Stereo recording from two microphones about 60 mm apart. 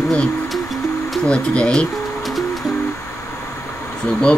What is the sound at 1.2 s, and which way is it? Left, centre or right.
Speech, centre.